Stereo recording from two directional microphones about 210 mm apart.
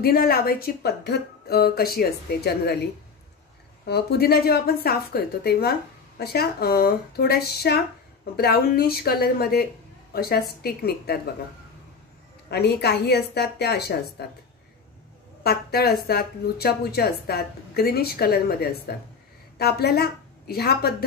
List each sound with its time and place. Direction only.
0.0 s speech: 45° left (ahead or behind)
3.8 s speech: 50° left (ahead or behind)
12.4 s speech: 50° left (ahead or behind)
15.4 s a woman's voice: 50° left (ahead or behind)